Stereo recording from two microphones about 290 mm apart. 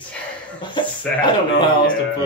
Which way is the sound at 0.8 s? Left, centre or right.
Centre.